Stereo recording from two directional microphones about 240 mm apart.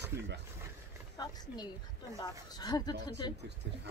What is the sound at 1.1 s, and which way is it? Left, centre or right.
Speech, centre.